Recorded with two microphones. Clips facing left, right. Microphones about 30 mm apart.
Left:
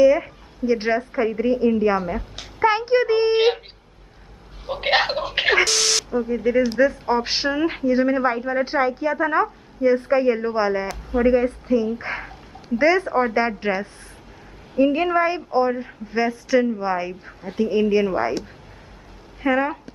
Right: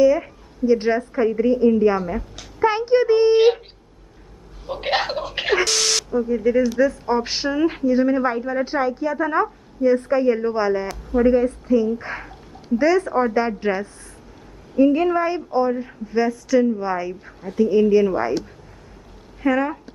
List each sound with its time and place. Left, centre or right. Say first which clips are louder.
0.0 s a woman's voice: left 1 dB; centre
4.6 s speech: left 2 dB; left
5.7 s speech: even; centre
6.0 s speech: right 2 dB; left